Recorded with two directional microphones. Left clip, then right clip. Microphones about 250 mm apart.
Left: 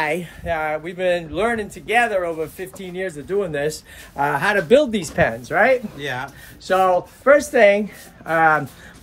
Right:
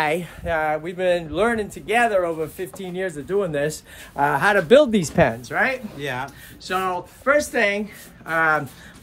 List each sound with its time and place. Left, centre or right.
0.0 s speech: right
0.6 s speech: centre
5.5 s speech: centre
5.9 s speech: centre
6.7 s speech: centre